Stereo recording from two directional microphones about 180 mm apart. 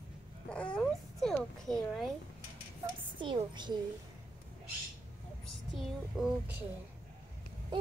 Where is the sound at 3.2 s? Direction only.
25° right (ahead or behind).